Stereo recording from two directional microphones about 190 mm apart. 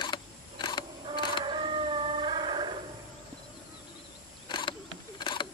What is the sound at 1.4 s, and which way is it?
Howl, 25° right (ahead or behind).